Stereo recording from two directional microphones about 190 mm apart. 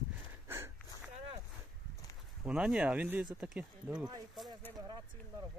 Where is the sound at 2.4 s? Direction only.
5° right (ahead or behind).